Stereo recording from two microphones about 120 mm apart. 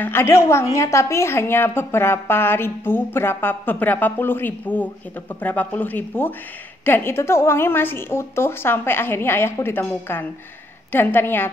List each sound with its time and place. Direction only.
0.0 s a woman's voice: 20° left (ahead or behind)